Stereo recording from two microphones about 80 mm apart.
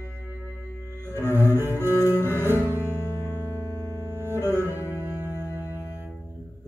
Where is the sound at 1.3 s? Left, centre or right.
Right.